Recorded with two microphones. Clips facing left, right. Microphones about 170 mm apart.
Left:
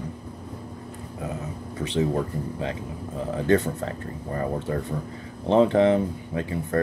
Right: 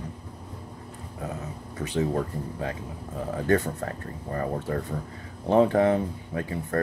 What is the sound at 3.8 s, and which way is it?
Speech, 35° left (ahead or behind).